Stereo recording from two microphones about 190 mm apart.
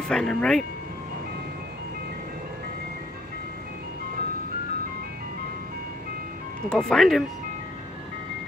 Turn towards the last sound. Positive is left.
turn(degrees=0)  # may be behind; listen again after turning